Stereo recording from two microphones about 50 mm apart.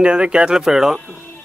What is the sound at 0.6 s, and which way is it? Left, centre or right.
Speech, centre.